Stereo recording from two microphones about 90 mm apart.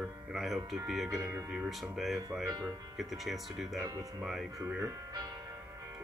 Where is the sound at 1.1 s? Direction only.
35° right (ahead or behind).